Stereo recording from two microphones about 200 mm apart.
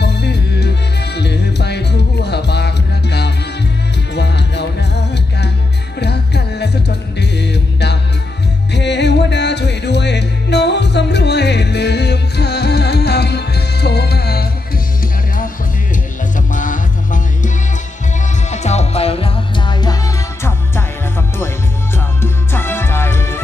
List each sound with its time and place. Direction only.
0.0 s music: 55° left (ahead or behind); by 17.5 s 40° left (ahead or behind)
18.5 s music: 35° left (ahead or behind); by 20.8 s 15° left (ahead or behind)
21.9 s music: 10° left (ahead or behind)